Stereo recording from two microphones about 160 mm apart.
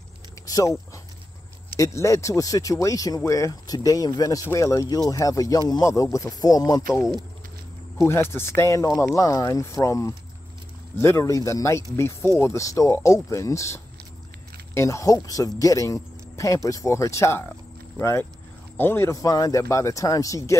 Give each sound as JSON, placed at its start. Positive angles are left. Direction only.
{"t": 0.5, "sound": "speech", "side_deg": 20}
{"t": 1.8, "sound": "speech", "side_deg": 20}
{"t": 8.0, "sound": "speech", "side_deg": 15}